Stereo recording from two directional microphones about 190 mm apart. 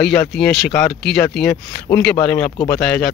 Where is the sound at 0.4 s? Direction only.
5° left (ahead or behind).